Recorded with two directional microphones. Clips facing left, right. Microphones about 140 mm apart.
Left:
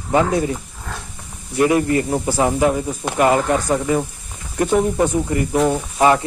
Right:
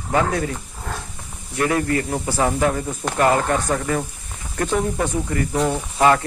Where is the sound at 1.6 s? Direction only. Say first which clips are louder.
Left 4 dB; 20° left (ahead or behind).